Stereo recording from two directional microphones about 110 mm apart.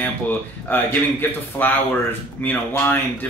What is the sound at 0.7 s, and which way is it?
Speech, 20° left (ahead or behind).